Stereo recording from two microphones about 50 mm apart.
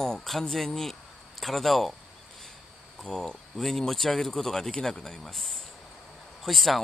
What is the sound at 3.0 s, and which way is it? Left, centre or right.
Speech, centre.